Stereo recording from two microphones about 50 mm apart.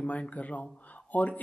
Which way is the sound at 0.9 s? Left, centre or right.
Left.